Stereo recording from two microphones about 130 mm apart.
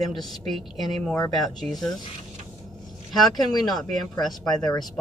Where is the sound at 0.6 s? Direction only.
Centre (ahead or behind).